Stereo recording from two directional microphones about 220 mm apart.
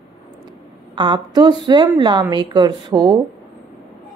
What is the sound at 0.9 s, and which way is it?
A woman's voice, 20° right (ahead or behind).